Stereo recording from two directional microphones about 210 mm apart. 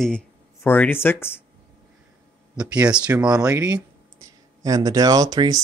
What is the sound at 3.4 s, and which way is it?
Speech, 15° right (ahead or behind).